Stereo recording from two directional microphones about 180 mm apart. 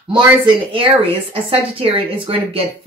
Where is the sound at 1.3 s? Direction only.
30° right (ahead or behind).